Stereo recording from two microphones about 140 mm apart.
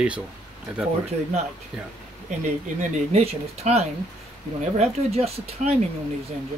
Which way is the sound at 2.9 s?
50° right (ahead or behind).